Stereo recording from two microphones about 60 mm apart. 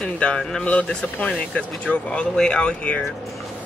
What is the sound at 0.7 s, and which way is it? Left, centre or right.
Speech, left.